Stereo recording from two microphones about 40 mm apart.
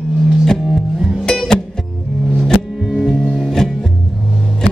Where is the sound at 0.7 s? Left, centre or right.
Centre.